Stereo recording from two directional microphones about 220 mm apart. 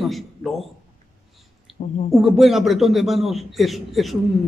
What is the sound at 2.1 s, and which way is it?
A man's voice, centre (ahead or behind).